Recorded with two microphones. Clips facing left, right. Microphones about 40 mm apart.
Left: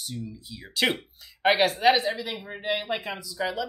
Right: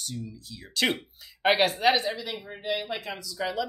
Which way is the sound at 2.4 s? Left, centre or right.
Left.